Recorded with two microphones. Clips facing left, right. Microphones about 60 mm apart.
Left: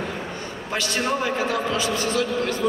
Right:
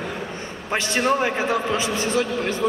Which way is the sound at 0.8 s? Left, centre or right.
Right.